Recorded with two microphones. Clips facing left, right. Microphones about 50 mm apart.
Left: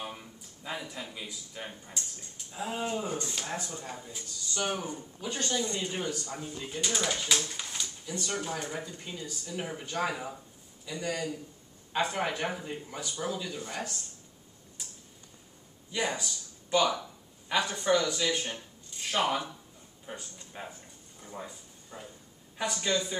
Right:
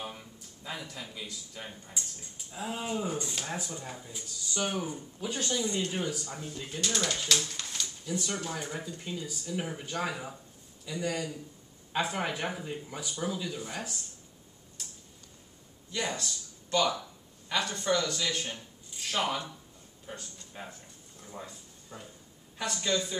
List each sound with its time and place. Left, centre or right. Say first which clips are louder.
0.0 s speech: left 1 dB; centre
8.1 s speech: even; centre
15.9 s speech: left 2 dB; centre